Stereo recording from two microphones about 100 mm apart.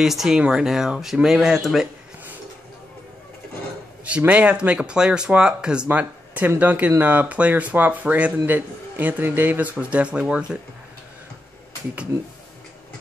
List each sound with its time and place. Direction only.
0.0 s speech: 5° right (ahead or behind)
4.3 s speech: 10° right (ahead or behind)